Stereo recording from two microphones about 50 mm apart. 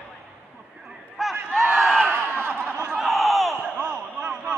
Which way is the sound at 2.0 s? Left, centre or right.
Right.